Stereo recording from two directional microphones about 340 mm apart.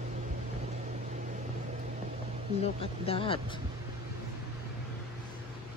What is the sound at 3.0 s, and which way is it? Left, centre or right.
Speech, centre.